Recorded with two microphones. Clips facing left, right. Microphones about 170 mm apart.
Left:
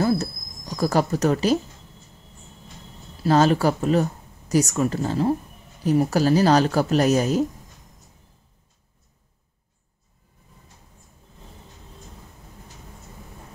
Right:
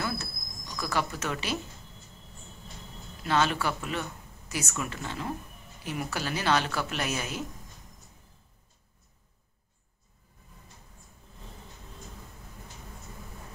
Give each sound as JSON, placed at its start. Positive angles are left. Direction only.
{"t": 0.0, "sound": "speech", "side_deg": 40}
{"t": 3.2, "sound": "a woman's voice", "side_deg": 35}